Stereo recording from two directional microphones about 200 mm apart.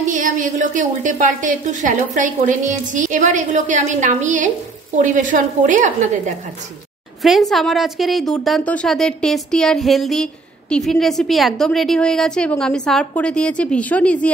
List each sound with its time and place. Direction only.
0.1 s a woman's voice: 40° right (ahead or behind)
7.2 s a woman's voice: centre (ahead or behind)